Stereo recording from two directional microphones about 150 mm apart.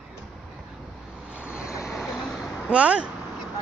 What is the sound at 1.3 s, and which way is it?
Vehicle, 10° right (ahead or behind).